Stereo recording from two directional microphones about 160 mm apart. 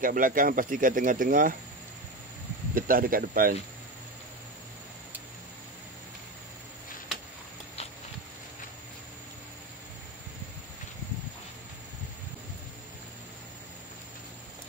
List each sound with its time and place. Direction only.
0.0 s speech: 60° right (ahead or behind)
2.7 s speech: 60° right (ahead or behind)